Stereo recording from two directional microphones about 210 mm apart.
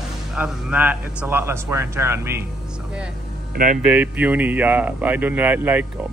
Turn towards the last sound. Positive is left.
turn(degrees=-10)  # may be behind; listen again after turning